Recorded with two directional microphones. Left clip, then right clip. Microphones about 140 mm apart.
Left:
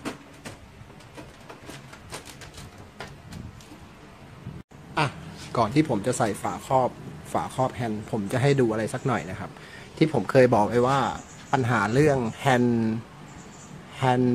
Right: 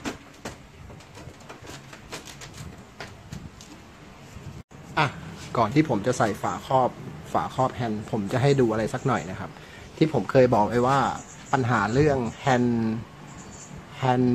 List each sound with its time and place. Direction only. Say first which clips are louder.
4.9 s a man's voice: right 2 dB; 10° left (ahead or behind)
9.9 s a man's voice: even; 15° left (ahead or behind)
13.9 s speech: even; 15° left (ahead or behind)